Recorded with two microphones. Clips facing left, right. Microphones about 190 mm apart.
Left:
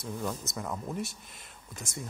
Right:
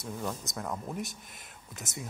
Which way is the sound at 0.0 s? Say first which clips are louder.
Left 1 dB; centre (ahead or behind).